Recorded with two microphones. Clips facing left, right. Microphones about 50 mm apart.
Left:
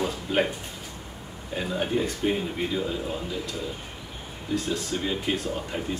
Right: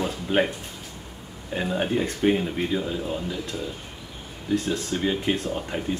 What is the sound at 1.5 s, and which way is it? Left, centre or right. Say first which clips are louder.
Speech: right 2 dB; centre.